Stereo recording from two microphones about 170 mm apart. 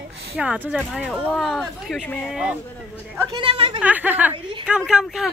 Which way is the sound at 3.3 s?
30° right (ahead or behind).